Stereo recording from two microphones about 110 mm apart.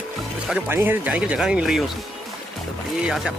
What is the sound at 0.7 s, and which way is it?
Speech, 20° right (ahead or behind).